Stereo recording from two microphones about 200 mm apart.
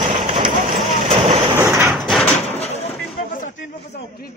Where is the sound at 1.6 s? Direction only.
10° right (ahead or behind).